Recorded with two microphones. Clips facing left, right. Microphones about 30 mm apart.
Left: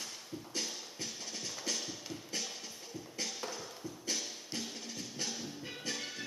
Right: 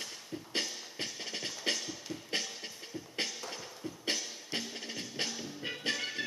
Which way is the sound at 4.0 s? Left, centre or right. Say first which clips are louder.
Right 4 dB; right.